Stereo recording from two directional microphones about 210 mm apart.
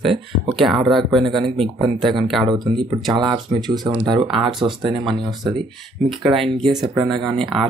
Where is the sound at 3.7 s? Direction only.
20° right (ahead or behind).